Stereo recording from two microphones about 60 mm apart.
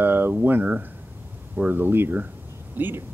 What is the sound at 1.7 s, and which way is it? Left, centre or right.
Speech, right.